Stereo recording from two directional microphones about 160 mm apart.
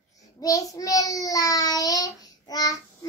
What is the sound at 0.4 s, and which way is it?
Child singing, 20° left (ahead or behind).